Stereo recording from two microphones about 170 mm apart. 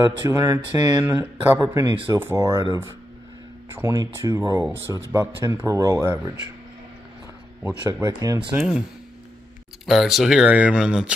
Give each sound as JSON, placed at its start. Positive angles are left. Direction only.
{"t": 0.0, "sound": "speech", "side_deg": -20}
{"t": 2.5, "sound": "speech", "side_deg": -30}
{"t": 3.7, "sound": "speech", "side_deg": -15}
{"t": 8.0, "sound": "speech", "side_deg": -20}
{"t": 8.5, "sound": "speech", "side_deg": -5}
{"t": 9.8, "sound": "speech", "side_deg": 0}